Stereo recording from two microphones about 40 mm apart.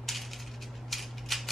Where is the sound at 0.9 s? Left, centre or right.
Centre.